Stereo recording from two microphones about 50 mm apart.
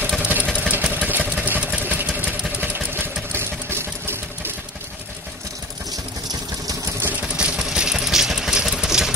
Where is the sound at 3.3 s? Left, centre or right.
Right.